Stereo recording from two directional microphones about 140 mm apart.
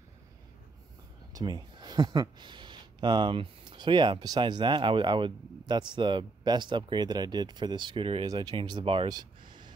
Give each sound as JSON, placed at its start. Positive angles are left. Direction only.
{"t": 1.3, "sound": "speech", "side_deg": -30}
{"t": 9.5, "sound": "gasp", "side_deg": -30}